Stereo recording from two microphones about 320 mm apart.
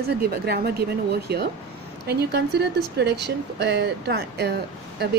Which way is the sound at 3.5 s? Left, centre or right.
Right.